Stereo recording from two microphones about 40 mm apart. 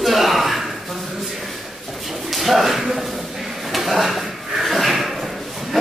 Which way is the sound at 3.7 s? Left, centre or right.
Centre.